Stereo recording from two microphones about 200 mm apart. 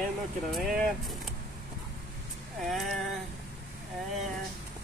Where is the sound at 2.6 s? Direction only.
Centre (ahead or behind).